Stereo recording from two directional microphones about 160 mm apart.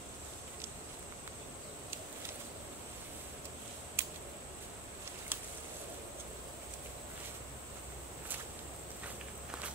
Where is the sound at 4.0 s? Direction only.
15° right (ahead or behind).